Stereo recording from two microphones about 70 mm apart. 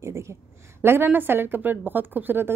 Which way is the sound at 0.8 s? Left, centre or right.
Right.